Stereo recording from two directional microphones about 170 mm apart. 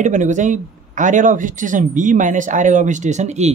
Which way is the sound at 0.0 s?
45° right (ahead or behind).